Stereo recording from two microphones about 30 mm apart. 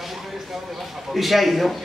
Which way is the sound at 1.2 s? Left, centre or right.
Centre.